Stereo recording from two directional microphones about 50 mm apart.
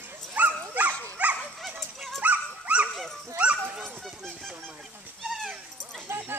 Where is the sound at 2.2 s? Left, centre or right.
Right.